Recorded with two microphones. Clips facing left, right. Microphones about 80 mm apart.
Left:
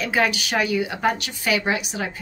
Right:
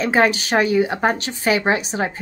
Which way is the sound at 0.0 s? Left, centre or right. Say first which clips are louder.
Right 5 dB; right.